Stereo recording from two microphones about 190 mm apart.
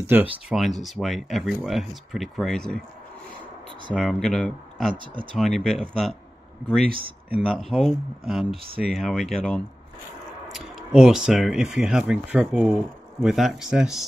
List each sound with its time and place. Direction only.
0.0 s speech: 10° right (ahead or behind)
0.5 s speech: centre (ahead or behind)
3.9 s speech: centre (ahead or behind)
4.9 s speech: 25° right (ahead or behind)
5.3 s speech: centre (ahead or behind)
7.3 s speech: 5° right (ahead or behind)